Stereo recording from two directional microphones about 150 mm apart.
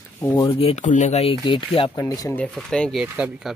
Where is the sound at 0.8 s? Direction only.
50° left (ahead or behind); by 2.0 s 35° left (ahead or behind).